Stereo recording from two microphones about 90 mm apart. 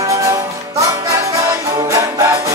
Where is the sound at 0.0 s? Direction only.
35° right (ahead or behind).